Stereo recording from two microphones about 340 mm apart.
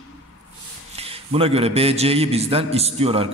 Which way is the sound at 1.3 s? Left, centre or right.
Centre.